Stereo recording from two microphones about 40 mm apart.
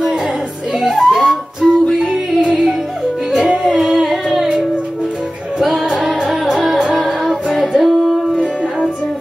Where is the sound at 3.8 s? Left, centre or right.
Centre.